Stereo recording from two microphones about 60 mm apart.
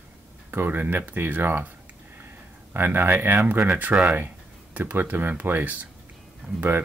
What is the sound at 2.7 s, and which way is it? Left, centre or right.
Speech, right.